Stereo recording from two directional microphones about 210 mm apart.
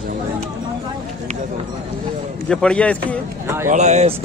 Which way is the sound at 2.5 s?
5° left (ahead or behind).